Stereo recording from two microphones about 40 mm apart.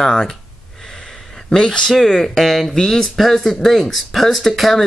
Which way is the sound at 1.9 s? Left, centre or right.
Centre.